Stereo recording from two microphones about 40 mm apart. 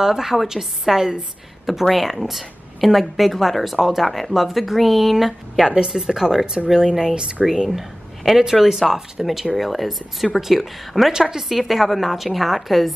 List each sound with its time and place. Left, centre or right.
0.0 s a woman's voice: centre
1.7 s a woman's voice: centre
11.1 s a woman's voice: centre